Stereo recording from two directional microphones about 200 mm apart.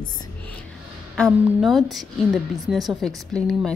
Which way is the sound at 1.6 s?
Centre (ahead or behind).